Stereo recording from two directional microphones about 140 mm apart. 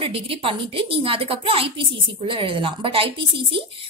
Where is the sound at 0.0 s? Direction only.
40° right (ahead or behind).